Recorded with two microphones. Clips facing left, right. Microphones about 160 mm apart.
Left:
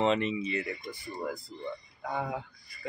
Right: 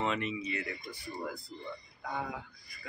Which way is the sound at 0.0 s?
25° left (ahead or behind).